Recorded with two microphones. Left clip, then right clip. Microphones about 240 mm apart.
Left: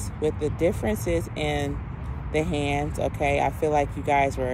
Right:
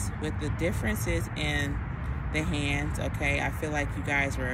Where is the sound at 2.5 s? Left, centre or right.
Left.